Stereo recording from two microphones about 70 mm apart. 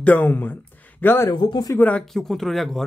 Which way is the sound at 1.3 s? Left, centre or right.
Left.